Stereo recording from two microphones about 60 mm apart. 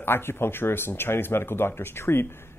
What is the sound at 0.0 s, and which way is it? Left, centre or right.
Speech, left.